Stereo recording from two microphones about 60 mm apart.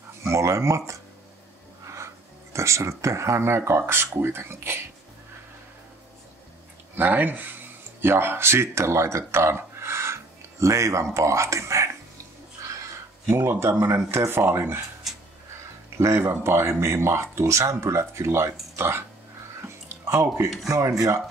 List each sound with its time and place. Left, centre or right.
0.2 s speech: right
2.5 s speech: right
7.0 s speech: right
13.3 s speech: right
16.0 s speech: right
20.6 s speech: right